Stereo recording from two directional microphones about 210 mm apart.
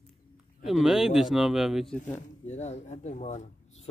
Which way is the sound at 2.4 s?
30° left (ahead or behind).